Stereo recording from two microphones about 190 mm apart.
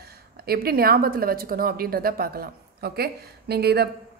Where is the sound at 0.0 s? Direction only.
55° right (ahead or behind).